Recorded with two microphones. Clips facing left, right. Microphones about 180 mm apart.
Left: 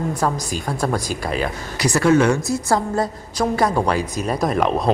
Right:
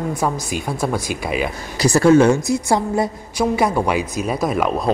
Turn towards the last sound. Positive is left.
turn(degrees=0)  # may be behind; listen again after turning